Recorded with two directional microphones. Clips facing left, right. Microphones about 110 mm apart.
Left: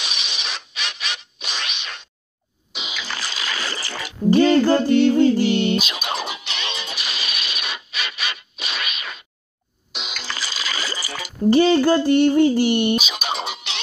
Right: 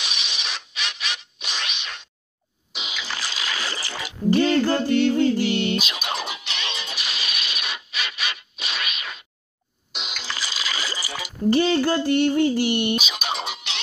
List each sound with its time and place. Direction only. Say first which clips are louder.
0.0 s a sound: left 1 dB; 5° left (ahead or behind)
2.7 s music: left 2 dB; 5° left (ahead or behind)
3.0 s a sound: left 1 dB; 10° right (ahead or behind)
4.3 s music: left 4 dB; 40° left (ahead or behind)
6.1 s music: left 2 dB; 10° left (ahead or behind)
7.4 s a sound: left 1 dB; centre (ahead or behind)
9.9 s music: left 2 dB; 5° left (ahead or behind)
10.2 s water: left 1 dB; 10° right (ahead or behind)
11.5 s music: left 5 dB; 35° left (ahead or behind)
13.0 s music: left 2 dB; 15° left (ahead or behind)